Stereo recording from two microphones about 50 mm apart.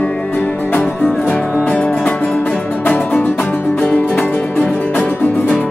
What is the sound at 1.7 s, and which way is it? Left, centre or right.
Music, left.